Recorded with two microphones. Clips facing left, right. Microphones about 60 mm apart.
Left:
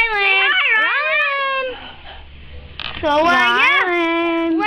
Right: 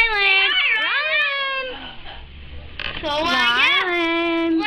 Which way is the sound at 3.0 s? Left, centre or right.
Left.